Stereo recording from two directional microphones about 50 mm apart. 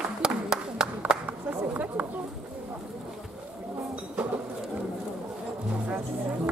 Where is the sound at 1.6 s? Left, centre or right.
Right.